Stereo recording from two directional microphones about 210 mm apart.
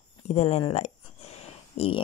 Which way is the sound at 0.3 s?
30° left (ahead or behind).